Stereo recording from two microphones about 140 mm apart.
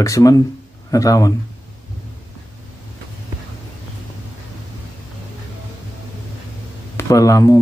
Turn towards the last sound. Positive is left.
turn(degrees=25)  # may be behind; listen again after turning